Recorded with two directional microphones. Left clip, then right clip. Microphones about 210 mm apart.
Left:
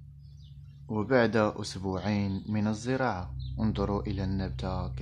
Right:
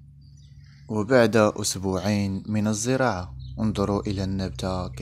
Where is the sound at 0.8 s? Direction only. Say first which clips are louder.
Right 6 dB; 20° right (ahead or behind).